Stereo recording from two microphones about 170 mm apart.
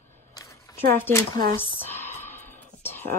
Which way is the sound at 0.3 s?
20° left (ahead or behind).